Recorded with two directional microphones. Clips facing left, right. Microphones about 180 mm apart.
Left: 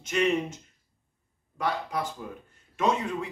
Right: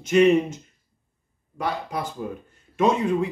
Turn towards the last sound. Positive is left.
turn(degrees=-15)  # may be behind; listen again after turning